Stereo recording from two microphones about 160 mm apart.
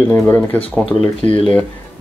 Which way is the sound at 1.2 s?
45° right (ahead or behind).